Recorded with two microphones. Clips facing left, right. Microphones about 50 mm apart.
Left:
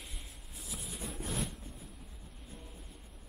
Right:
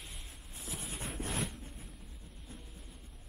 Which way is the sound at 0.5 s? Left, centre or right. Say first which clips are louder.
Right 2 dB; right.